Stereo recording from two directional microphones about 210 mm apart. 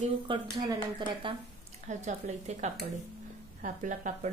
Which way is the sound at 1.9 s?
35° right (ahead or behind).